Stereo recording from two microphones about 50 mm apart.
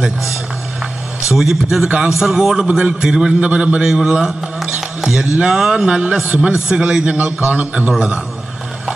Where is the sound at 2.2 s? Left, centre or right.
Centre.